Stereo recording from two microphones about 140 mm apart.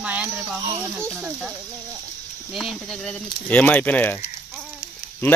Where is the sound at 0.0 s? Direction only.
10° right (ahead or behind).